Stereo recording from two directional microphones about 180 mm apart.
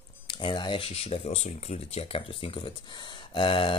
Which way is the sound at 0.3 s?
25° left (ahead or behind).